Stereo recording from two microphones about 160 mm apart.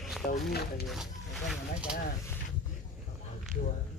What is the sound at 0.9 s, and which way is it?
Speech, centre (ahead or behind).